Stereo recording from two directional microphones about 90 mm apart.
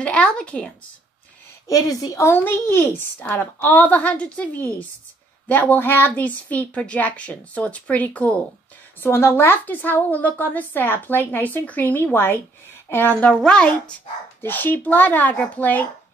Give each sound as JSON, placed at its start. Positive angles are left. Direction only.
{"t": 0.0, "sound": "a woman's voice", "side_deg": 15}
{"t": 1.7, "sound": "a woman's voice", "side_deg": 45}
{"t": 2.2, "sound": "a woman's voice", "side_deg": 25}
{"t": 9.0, "sound": "a woman's voice", "side_deg": 25}
{"t": 13.3, "sound": "a woman's voice", "side_deg": 10}
{"t": 14.4, "sound": "a woman's voice", "side_deg": 20}